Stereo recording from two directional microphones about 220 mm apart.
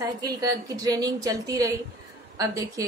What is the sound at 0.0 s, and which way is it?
A woman's voice, 15° right (ahead or behind).